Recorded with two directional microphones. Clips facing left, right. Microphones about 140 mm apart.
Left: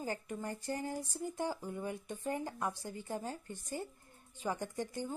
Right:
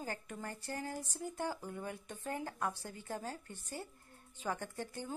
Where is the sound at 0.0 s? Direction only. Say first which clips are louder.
Left 4 dB; 15° left (ahead or behind).